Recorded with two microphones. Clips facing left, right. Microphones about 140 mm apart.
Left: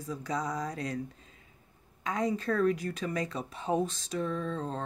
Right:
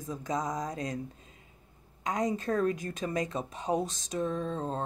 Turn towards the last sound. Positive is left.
turn(degrees=-40)  # may be behind; listen again after turning